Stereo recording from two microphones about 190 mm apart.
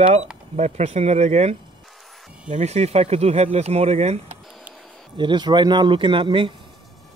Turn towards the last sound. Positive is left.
turn(degrees=-25)  # may be behind; listen again after turning